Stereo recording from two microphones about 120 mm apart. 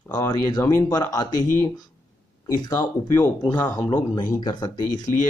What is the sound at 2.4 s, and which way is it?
Speech, 35° left (ahead or behind).